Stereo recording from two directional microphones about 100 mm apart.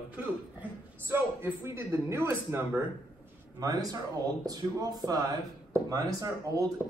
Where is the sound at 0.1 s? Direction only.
20° right (ahead or behind).